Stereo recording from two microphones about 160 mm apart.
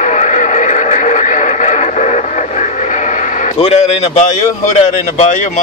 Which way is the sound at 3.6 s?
40° left (ahead or behind).